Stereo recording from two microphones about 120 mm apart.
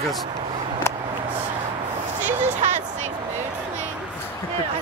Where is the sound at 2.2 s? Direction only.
90° right.